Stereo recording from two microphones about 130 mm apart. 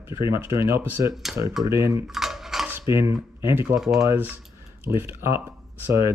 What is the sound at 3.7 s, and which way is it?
Speech, 5° right (ahead or behind).